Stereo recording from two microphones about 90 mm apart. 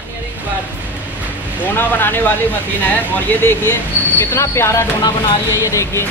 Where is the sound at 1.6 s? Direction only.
20° left (ahead or behind).